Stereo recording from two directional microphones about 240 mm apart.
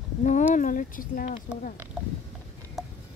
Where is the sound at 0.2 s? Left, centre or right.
Left.